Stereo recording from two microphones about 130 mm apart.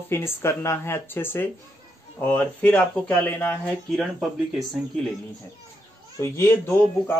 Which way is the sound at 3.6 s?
Centre (ahead or behind).